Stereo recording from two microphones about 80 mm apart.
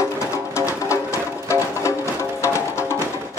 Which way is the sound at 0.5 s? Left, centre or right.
Left.